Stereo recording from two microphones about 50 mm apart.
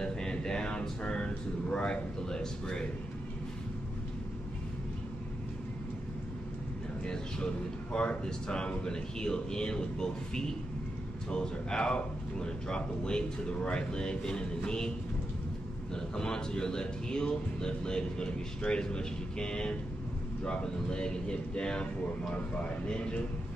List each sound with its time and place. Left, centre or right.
0.0 s speech: centre
7.1 s a man's voice: centre
15.9 s a man's voice: centre